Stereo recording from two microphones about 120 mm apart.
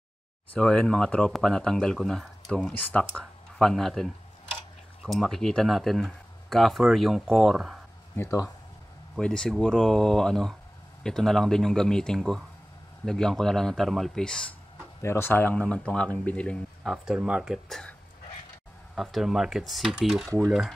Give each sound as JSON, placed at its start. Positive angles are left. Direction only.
{"t": 0.5, "sound": "speech", "side_deg": 5}
{"t": 8.2, "sound": "speech", "side_deg": 25}
{"t": 9.2, "sound": "speech", "side_deg": 5}
{"t": 15.0, "sound": "speech", "side_deg": 20}
{"t": 16.9, "sound": "speech", "side_deg": -5}
{"t": 18.9, "sound": "speech", "side_deg": 0}